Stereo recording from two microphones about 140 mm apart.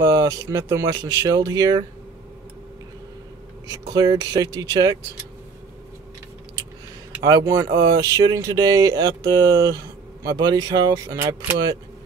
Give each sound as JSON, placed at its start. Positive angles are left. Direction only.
{"t": 0.0, "sound": "speech", "side_deg": -25}
{"t": 3.6, "sound": "speech", "side_deg": -30}
{"t": 7.2, "sound": "speech", "side_deg": -25}